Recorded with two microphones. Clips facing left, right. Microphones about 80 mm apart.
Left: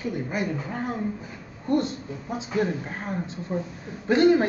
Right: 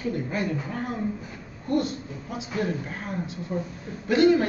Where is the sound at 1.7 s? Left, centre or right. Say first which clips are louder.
Left 1 dB; left.